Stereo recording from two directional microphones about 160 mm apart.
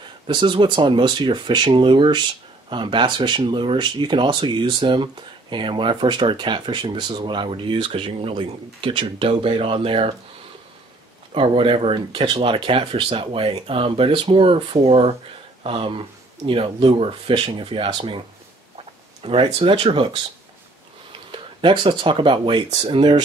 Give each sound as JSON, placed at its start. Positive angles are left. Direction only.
{"t": 0.3, "sound": "speech", "side_deg": -30}
{"t": 11.3, "sound": "speech", "side_deg": -35}
{"t": 19.2, "sound": "speech", "side_deg": -35}
{"t": 21.3, "sound": "speech", "side_deg": -30}